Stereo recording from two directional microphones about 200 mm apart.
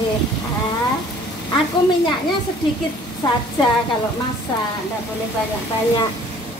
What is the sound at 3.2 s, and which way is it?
Speech, 20° left (ahead or behind).